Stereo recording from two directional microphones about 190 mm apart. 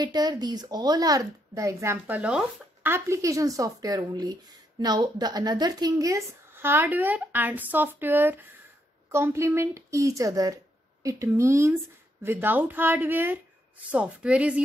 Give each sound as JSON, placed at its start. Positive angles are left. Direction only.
{"t": 0.0, "sound": "a woman's voice", "side_deg": -20}